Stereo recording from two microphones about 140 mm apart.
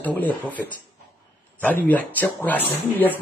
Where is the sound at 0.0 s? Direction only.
10° left (ahead or behind).